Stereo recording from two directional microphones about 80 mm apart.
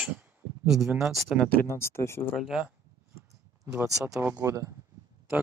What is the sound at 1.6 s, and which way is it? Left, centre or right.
Speech, left.